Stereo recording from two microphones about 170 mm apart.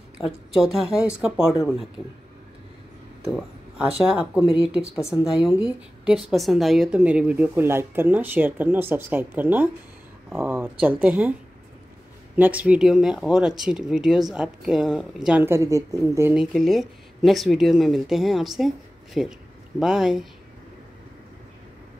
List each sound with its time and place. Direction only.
0.7 s speech: 5° right (ahead or behind)
3.3 s speech: 5° right (ahead or behind)
12.4 s speech: 10° right (ahead or behind)
15.4 s speech: 15° right (ahead or behind)
16.3 s speech: centre (ahead or behind)